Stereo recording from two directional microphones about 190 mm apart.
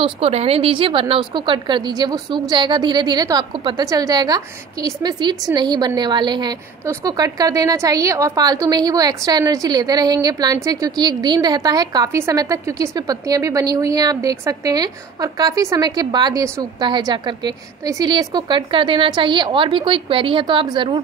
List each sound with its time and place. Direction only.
0.0 s a woman's voice: 30° right (ahead or behind)